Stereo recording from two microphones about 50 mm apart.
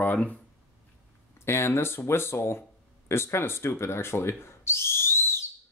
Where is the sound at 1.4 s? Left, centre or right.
Left.